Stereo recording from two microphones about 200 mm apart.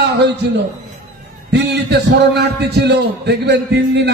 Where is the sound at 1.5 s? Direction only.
55° right (ahead or behind).